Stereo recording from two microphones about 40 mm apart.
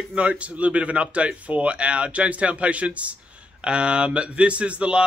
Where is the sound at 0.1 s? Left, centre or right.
Right.